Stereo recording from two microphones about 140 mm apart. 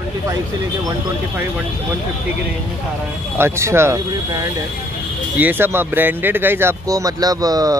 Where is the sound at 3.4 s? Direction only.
20° right (ahead or behind).